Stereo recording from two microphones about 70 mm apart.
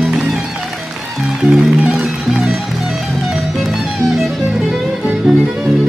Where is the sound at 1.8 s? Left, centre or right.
Centre.